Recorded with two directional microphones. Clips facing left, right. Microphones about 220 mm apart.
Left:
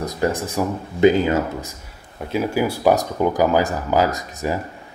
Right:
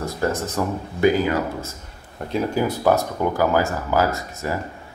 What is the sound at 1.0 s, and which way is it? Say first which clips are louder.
Speech: left 3 dB; 25° left (ahead or behind).